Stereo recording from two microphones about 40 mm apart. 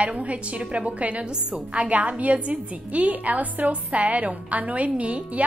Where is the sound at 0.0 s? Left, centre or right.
Right.